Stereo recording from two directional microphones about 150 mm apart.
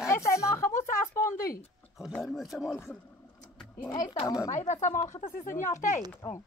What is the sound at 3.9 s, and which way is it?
Speech, 25° left (ahead or behind).